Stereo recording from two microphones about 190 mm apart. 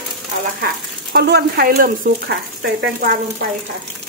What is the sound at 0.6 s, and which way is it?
Speech, 55° right (ahead or behind).